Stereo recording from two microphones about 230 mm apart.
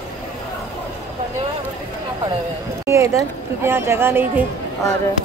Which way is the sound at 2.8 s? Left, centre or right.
Centre.